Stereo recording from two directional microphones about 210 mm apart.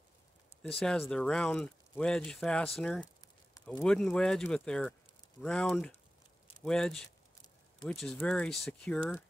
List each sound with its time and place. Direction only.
0.6 s speech: 5° left (ahead or behind)